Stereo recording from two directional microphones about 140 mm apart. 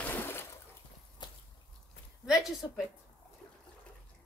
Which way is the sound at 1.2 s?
30° left (ahead or behind).